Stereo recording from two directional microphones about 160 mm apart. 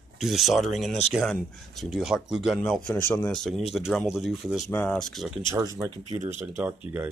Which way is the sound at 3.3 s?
Centre (ahead or behind).